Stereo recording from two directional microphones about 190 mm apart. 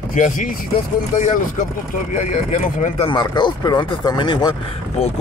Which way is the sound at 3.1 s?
25° left (ahead or behind).